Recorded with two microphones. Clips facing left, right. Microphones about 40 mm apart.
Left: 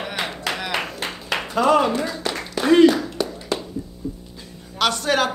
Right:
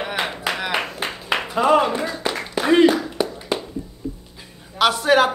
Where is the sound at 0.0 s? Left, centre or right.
Centre.